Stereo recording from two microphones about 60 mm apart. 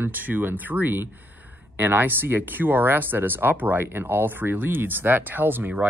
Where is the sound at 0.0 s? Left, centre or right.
Right.